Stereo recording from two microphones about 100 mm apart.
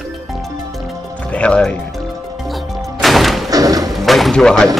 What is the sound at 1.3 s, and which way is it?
Speech, 10° left (ahead or behind).